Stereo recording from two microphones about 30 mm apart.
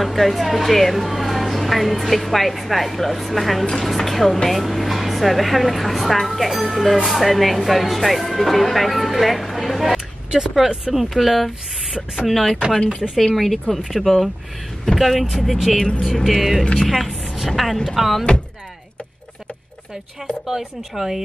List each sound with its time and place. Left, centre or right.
0.0 s speech: centre
12.7 s speech: left
13.1 s speech: centre
15.0 s speech: centre
16.8 s speech: centre
20.4 s speech: centre